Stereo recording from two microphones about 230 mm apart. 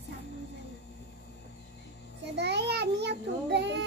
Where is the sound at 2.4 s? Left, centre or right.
Right.